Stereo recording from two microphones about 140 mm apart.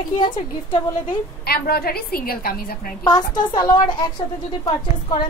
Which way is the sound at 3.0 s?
30° left (ahead or behind).